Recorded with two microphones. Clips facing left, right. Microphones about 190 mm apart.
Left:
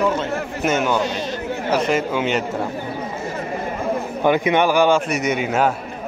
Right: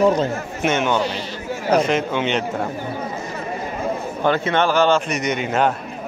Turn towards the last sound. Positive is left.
turn(degrees=5)  # may be behind; listen again after turning